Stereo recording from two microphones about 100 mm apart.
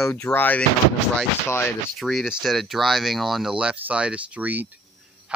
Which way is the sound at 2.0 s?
Centre (ahead or behind).